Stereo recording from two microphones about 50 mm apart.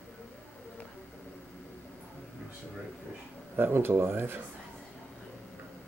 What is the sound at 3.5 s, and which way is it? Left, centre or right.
Speech, right.